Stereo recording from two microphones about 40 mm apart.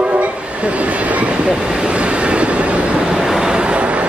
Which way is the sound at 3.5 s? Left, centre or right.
Right.